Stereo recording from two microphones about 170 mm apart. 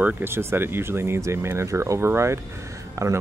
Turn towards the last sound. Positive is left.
turn(degrees=-20)  # may be behind; listen again after turning